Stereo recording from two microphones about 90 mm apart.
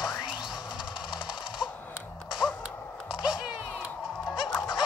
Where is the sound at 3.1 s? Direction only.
10° right (ahead or behind).